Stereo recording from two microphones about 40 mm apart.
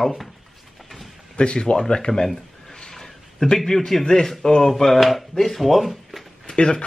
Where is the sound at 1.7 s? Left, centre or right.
Centre.